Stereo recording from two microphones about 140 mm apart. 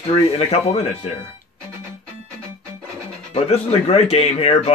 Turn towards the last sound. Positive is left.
turn(degrees=45)  # may be behind; listen again after turning